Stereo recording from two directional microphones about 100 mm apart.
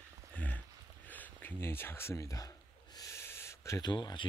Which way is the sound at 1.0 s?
15° left (ahead or behind).